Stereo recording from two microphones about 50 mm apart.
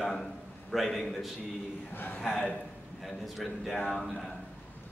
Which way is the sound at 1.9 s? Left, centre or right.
Left.